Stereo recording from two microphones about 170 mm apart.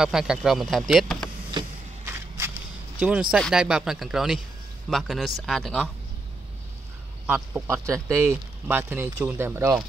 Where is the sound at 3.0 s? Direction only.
5° right (ahead or behind).